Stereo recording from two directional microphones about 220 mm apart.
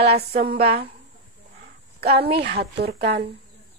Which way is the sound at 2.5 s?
45° right (ahead or behind).